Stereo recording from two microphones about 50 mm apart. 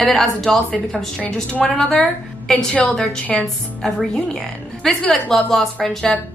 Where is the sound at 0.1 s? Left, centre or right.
Centre.